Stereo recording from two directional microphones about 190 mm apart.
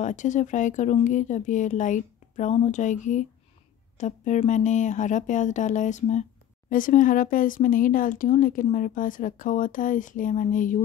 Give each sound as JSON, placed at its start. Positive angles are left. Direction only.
{"t": 0.0, "sound": "speech", "side_deg": 40}